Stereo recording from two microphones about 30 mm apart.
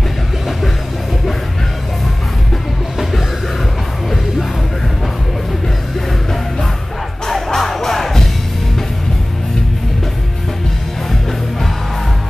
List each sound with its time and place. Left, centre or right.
7.2 s music: centre